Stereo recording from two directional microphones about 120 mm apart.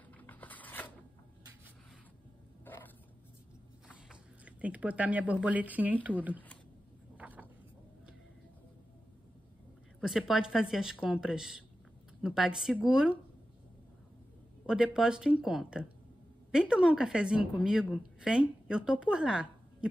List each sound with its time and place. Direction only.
0.2 s a sound: 15° left (ahead or behind)
2.6 s roaring cats: 15° left (ahead or behind)
3.9 s speech: 10° right (ahead or behind)
7.2 s a sound: 10° right (ahead or behind)
9.9 s a woman's voice: centre (ahead or behind)
14.7 s a woman's voice: 5° right (ahead or behind)